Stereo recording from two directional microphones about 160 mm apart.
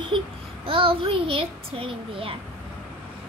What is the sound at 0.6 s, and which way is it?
A child's voice, 35° right (ahead or behind).